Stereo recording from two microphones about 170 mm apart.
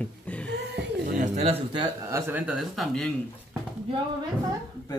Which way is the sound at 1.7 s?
15° right (ahead or behind).